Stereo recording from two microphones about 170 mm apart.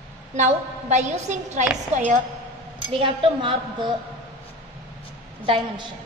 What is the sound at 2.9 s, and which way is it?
A woman's voice, 30° right (ahead or behind).